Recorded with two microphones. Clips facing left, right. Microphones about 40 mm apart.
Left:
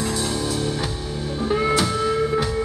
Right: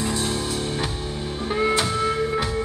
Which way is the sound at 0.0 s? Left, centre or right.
Right.